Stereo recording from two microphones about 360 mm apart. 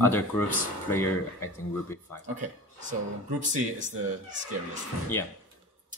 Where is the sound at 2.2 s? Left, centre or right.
Right.